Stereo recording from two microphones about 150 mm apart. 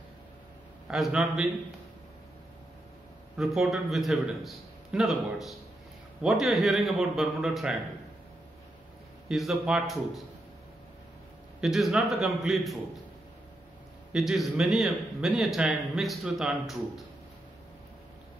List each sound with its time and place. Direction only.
0.8 s a man's voice: centre (ahead or behind)
3.3 s a man's voice: centre (ahead or behind)
9.3 s a man's voice: centre (ahead or behind)
11.6 s a man's voice: centre (ahead or behind)
14.1 s a man's voice: centre (ahead or behind)